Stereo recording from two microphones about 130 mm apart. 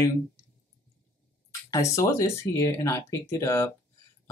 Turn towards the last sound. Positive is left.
turn(degrees=20)  # may be behind; listen again after turning